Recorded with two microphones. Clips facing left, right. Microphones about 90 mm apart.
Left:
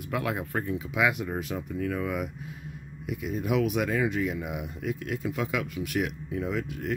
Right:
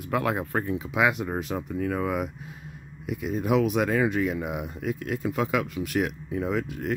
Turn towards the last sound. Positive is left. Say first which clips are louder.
# right 3 dB
turn(degrees=-40)  # may be behind; listen again after turning